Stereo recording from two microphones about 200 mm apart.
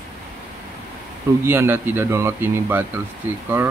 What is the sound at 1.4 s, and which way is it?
Speech, 10° right (ahead or behind).